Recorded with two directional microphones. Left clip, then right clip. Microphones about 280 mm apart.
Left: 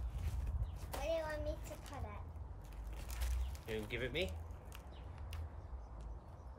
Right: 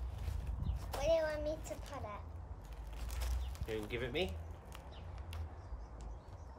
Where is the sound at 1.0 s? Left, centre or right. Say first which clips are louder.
Right 6 dB; right.